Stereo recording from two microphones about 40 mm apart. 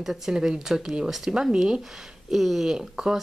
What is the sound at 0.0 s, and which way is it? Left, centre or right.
Speech, centre.